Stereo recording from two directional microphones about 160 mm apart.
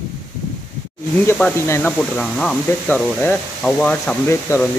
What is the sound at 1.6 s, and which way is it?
Speech, 15° left (ahead or behind).